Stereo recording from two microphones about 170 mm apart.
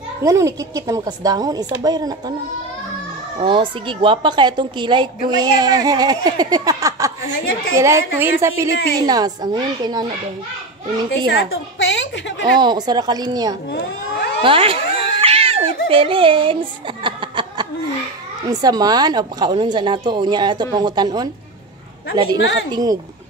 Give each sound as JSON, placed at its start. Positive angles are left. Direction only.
{"t": 0.2, "sound": "speech", "side_deg": -20}
{"t": 3.4, "sound": "a woman's voice", "side_deg": -30}
{"t": 11.5, "sound": "a child's voice", "side_deg": 90}
{"t": 12.5, "sound": "speech", "side_deg": -25}
{"t": 13.7, "sound": "speech", "side_deg": 90}
{"t": 14.4, "sound": "cat", "side_deg": -30}
{"t": 17.0, "sound": "a sound", "side_deg": -30}
{"t": 18.5, "sound": "speech", "side_deg": -20}